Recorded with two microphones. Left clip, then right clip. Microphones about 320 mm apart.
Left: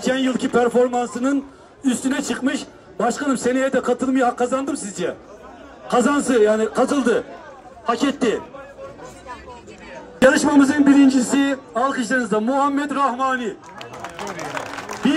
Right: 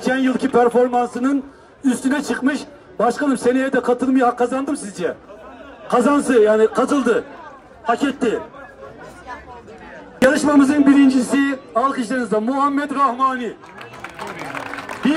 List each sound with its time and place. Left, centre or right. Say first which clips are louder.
0.1 s a man's voice: right 2 dB; centre
10.1 s a man's voice: even; centre